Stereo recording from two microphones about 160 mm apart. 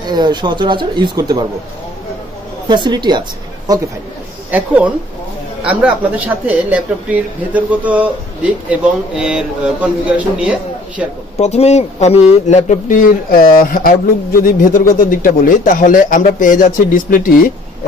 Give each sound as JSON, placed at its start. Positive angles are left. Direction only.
{"t": 0.1, "sound": "speech", "side_deg": -25}
{"t": 2.7, "sound": "speech", "side_deg": -30}
{"t": 4.5, "sound": "speech", "side_deg": -10}
{"t": 11.3, "sound": "speech", "side_deg": 45}